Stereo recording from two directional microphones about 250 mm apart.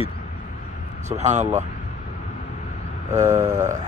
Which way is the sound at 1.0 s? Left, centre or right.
Right.